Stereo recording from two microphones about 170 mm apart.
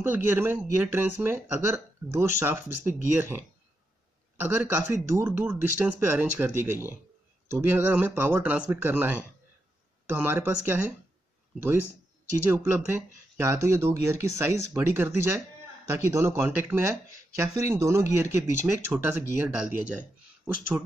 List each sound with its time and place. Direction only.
0.0 s speech: 15° right (ahead or behind)
4.9 s speech: 15° right (ahead or behind)
12.4 s speech: 15° right (ahead or behind)